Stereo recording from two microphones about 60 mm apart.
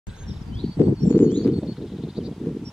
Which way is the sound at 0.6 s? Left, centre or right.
Centre.